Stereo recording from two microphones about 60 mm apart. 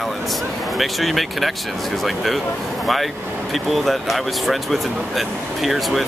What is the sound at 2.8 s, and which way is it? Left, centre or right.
Speech, centre.